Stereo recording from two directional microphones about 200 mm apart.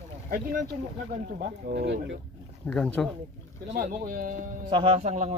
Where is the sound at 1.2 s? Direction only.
55° right (ahead or behind).